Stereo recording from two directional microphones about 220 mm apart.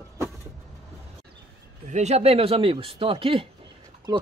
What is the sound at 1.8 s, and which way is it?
Speech, 30° right (ahead or behind).